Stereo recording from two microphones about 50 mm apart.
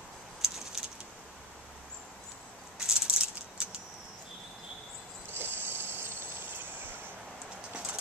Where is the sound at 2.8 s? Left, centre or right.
Centre.